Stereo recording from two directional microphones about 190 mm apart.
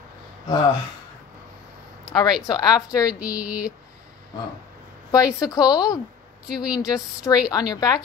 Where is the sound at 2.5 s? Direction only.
20° left (ahead or behind).